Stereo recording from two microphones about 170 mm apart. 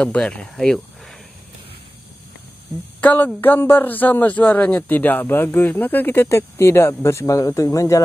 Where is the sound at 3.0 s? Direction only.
10° left (ahead or behind).